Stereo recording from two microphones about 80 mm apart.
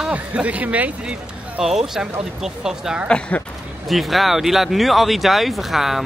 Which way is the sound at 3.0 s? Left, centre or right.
Centre.